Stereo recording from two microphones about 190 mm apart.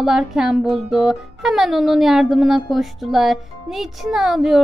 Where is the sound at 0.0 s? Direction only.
Centre (ahead or behind).